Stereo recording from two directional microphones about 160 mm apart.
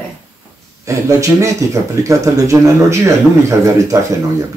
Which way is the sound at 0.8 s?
20° right (ahead or behind).